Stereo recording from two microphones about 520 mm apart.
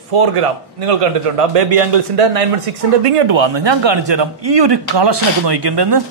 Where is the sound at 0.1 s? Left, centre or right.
Right.